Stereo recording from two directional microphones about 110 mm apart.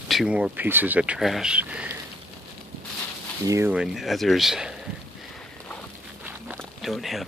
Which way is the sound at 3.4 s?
30° right (ahead or behind).